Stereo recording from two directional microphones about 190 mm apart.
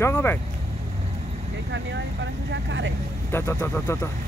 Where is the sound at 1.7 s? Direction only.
70° right (ahead or behind).